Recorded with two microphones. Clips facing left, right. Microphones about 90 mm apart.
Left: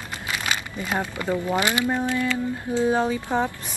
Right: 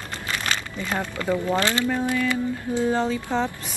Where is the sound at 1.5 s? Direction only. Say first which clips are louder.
Even; 15° left (ahead or behind).